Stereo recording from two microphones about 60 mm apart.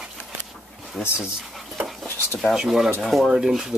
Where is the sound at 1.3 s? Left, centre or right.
Centre.